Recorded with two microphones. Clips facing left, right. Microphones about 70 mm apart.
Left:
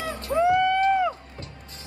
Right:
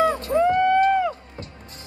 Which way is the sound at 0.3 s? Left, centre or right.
Centre.